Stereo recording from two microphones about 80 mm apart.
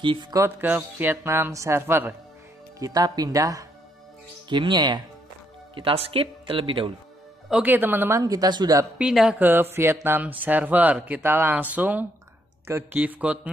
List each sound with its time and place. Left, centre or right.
0.0 s speech: right
0.6 s speech: right
1.2 s speech: right
2.8 s speech: right
4.5 s speech: right
6.4 s speech: right
7.6 s speech: right
8.2 s speech: right
8.9 s a woman's voice: centre
9.4 s speech: right
12.6 s speech: right
13.0 s a woman's voice: centre